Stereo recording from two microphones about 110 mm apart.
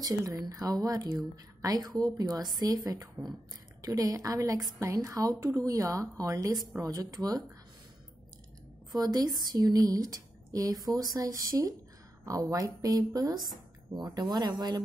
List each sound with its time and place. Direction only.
0.0 s speech: 35° right (ahead or behind)
8.9 s speech: 35° right (ahead or behind)